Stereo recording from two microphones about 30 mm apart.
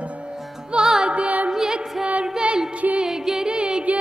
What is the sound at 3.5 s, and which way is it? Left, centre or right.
Music, right.